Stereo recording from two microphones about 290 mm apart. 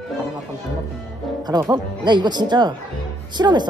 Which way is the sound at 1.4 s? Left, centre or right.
Centre.